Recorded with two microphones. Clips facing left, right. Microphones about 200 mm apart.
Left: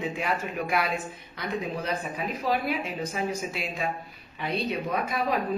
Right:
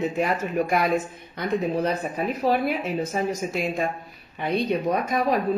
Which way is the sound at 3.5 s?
45° right (ahead or behind).